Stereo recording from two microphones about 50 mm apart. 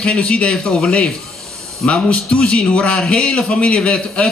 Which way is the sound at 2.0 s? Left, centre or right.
Left.